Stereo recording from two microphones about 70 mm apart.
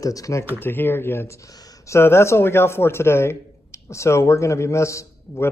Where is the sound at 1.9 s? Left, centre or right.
Left.